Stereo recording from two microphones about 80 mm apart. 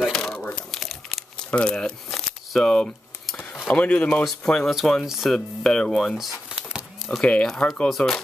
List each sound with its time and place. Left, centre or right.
0.0 s crumpling: centre
1.5 s a sound: centre
3.5 s speech: centre
7.2 s speech: centre